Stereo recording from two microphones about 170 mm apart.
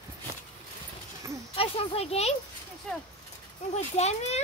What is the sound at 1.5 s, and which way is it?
Speech, 35° left (ahead or behind).